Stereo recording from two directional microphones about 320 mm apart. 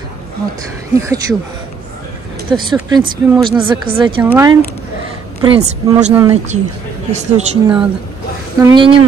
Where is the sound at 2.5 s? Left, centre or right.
Centre.